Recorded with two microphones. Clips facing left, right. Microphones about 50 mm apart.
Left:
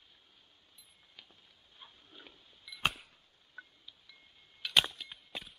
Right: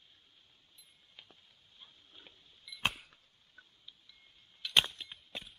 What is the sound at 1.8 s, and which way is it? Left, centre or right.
Pig, left.